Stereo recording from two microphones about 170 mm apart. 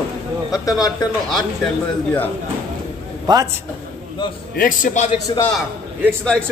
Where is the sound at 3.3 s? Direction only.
25° right (ahead or behind).